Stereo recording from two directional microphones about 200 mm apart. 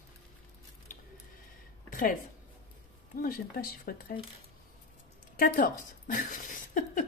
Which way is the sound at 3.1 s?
45° left (ahead or behind).